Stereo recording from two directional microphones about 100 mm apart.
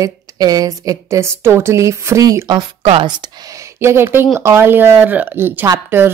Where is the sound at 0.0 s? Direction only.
40° right (ahead or behind).